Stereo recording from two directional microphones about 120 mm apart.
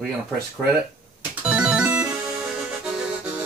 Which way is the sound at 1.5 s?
10° right (ahead or behind).